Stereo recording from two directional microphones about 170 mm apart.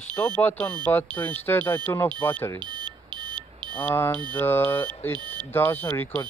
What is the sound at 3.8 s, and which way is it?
Speech, 15° left (ahead or behind).